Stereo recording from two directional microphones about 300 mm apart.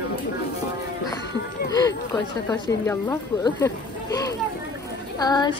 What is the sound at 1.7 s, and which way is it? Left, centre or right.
A woman's voice, centre.